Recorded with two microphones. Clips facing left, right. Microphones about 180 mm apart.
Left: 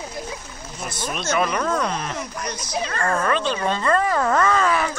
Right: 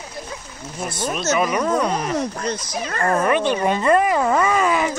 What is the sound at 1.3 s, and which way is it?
Speech, 5° right (ahead or behind).